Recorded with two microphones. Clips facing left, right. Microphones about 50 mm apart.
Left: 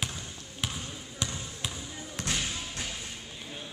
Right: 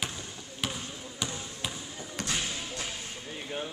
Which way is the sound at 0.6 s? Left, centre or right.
Centre.